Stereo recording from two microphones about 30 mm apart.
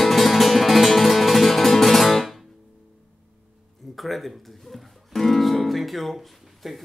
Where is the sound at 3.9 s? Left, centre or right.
Centre.